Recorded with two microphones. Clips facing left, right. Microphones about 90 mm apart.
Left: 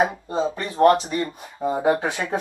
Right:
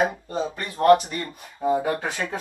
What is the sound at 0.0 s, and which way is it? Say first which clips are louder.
Speech: left 3 dB; 25° left (ahead or behind).